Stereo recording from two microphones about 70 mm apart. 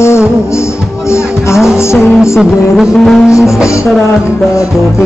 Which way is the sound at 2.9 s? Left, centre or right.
Centre.